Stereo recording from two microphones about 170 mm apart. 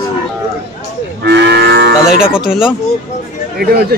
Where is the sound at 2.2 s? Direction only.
5° right (ahead or behind).